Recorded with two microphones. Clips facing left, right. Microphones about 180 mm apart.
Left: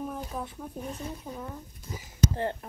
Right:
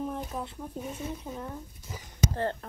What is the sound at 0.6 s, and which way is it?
Speech, 5° right (ahead or behind).